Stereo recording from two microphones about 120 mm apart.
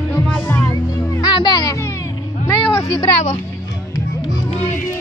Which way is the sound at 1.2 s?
35° left (ahead or behind).